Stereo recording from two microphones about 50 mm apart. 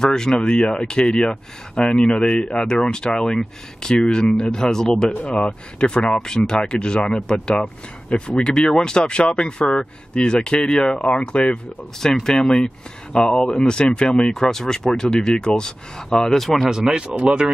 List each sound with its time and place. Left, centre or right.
0.0 s speech: centre
7.6 s speech: left
8.5 s speech: centre
12.0 s speech: centre
17.3 s speech: right